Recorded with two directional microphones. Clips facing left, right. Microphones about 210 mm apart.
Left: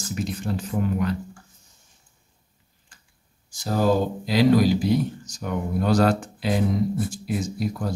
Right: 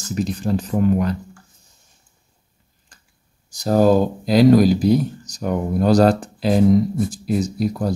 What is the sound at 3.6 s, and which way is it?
Speech, 45° right (ahead or behind).